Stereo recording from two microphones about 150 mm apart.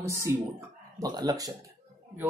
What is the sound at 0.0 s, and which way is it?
A woman's voice, 20° right (ahead or behind).